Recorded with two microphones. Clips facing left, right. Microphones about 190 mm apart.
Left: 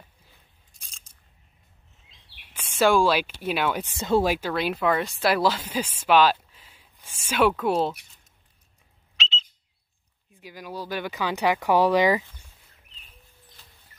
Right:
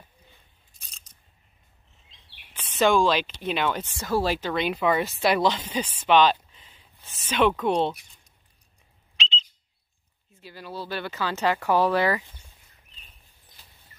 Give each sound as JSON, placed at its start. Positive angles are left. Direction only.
{"t": 2.0, "sound": "a sound", "side_deg": 10}
{"t": 3.9, "sound": "speech", "side_deg": 25}
{"t": 4.2, "sound": "speech", "side_deg": 10}
{"t": 4.7, "sound": "speech", "side_deg": -5}
{"t": 9.1, "sound": "a sound", "side_deg": 5}
{"t": 10.3, "sound": "speech", "side_deg": 15}